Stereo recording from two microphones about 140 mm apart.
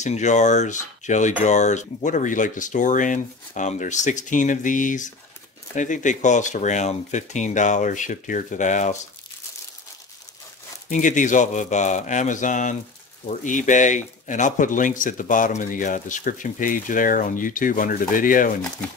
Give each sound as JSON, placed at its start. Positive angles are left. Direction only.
{"t": 0.0, "sound": "speech", "side_deg": 55}
{"t": 10.9, "sound": "speech", "side_deg": 65}